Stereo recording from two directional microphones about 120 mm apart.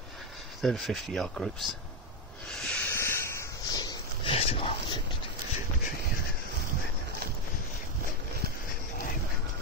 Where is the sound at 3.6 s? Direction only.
35° left (ahead or behind).